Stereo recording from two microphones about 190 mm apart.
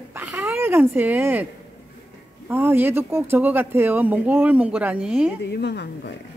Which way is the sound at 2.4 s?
10° right (ahead or behind).